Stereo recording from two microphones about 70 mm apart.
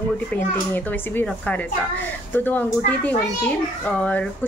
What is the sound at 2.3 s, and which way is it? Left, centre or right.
Speech, left.